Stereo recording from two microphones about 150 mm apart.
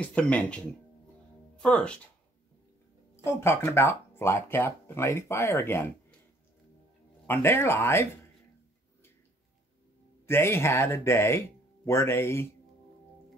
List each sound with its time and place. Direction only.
0.0 s speech: 10° left (ahead or behind)
1.6 s speech: 5° left (ahead or behind)
3.3 s speech: 15° left (ahead or behind)
7.2 s speech: 15° left (ahead or behind)
10.2 s speech: 15° left (ahead or behind)